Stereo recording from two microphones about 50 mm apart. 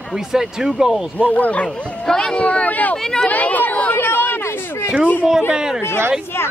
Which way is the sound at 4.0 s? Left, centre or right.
Left.